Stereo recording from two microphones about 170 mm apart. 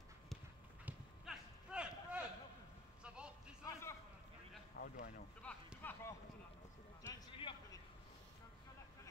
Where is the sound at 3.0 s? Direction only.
5° right (ahead or behind).